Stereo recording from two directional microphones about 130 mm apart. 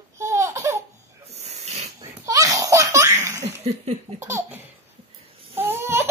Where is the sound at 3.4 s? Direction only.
55° right (ahead or behind).